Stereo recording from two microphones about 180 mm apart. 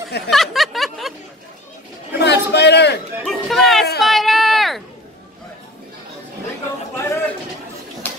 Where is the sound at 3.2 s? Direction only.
Centre (ahead or behind).